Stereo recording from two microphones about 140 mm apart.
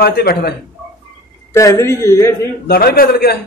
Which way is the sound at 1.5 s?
20° left (ahead or behind).